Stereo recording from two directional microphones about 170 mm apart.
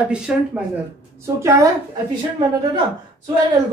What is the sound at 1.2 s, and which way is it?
Speech, 20° right (ahead or behind).